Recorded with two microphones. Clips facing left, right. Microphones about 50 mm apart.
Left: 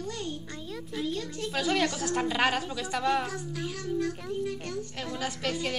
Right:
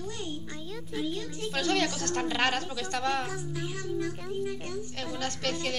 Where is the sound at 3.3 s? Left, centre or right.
Centre.